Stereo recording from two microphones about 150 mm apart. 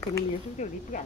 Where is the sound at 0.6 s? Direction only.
55° left (ahead or behind).